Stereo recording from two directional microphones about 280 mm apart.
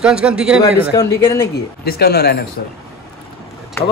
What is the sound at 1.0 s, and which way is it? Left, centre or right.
Speech, centre.